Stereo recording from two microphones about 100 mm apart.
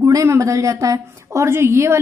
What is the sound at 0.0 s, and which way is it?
A woman's voice, 30° right (ahead or behind).